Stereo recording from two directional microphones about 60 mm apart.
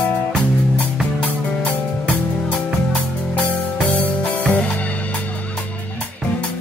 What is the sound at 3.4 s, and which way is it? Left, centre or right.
Music, left.